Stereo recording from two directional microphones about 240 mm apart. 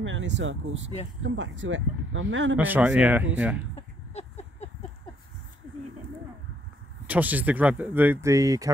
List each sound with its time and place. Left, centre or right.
0.0 s speech: right
2.5 s speech: centre
4.1 s a sound: left
7.1 s speech: centre